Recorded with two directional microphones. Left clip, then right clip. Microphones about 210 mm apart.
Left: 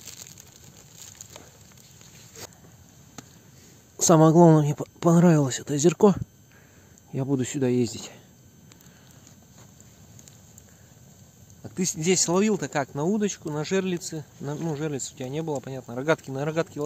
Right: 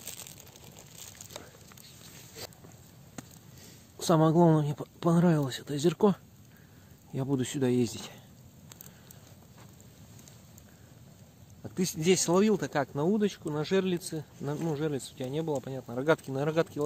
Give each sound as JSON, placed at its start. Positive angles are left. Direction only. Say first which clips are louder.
{"t": 4.0, "sound": "speech", "louder": "left 7 dB", "side_deg": 30}
{"t": 7.1, "sound": "speech", "louder": "left 4 dB", "side_deg": 15}
{"t": 11.6, "sound": "speech", "louder": "left 2 dB", "side_deg": 10}